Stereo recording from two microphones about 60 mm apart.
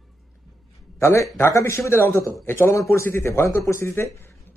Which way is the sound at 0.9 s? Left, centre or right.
Left.